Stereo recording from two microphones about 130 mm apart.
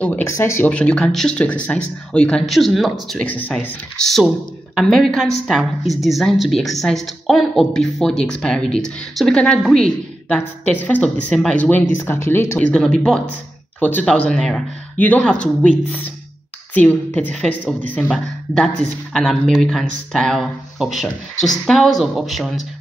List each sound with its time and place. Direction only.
0.0 s speech: 10° left (ahead or behind)
0.7 s speech: 10° left (ahead or behind)
3.3 s speech: 10° left (ahead or behind)
12.5 s speech: 5° left (ahead or behind)
16.7 s speech: 10° left (ahead or behind)